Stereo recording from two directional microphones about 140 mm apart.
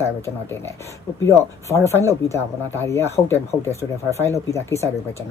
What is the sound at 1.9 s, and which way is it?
Speech, 20° left (ahead or behind).